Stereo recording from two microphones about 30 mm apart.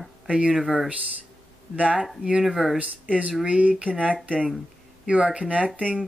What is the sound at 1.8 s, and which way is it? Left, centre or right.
Speech, right.